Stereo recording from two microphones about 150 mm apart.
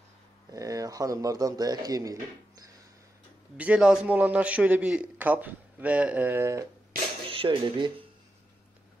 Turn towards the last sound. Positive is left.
turn(degrees=-35)  # may be behind; listen again after turning